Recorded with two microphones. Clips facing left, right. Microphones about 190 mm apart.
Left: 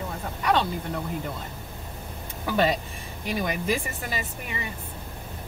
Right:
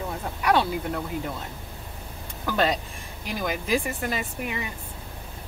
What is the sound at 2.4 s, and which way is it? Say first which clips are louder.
Speech: left 1 dB; 5° left (ahead or behind).